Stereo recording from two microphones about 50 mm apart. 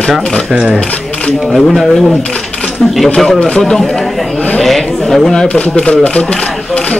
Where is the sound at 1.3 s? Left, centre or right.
Centre.